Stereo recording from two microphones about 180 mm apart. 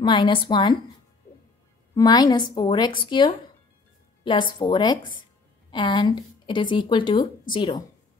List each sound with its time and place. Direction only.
0.0 s speech: 25° left (ahead or behind)
2.0 s speech: 20° left (ahead or behind)